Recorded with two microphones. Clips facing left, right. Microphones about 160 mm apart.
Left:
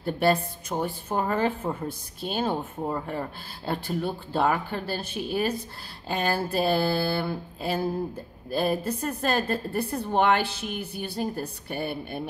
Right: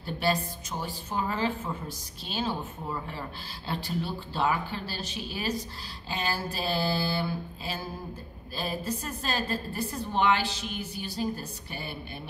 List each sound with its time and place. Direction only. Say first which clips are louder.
0.0 s a woman's voice: left 5 dB; 55° left (ahead or behind)